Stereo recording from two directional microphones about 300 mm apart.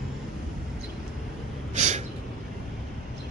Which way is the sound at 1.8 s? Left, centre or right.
Right.